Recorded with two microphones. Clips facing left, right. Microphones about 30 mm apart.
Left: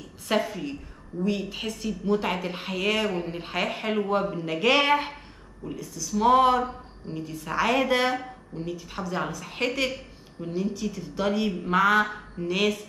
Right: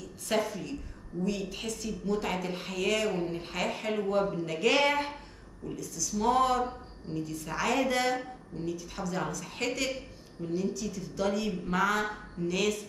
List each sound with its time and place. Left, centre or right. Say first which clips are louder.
0.0 s a woman's voice: left 4 dB; left